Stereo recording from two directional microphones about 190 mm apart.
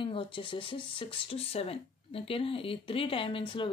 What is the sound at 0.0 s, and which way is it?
Speech, 25° left (ahead or behind).